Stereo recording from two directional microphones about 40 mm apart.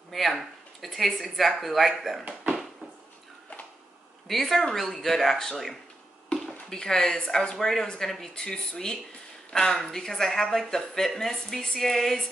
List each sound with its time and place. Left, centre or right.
0.1 s speech: centre
4.3 s speech: centre
7.8 s speech: centre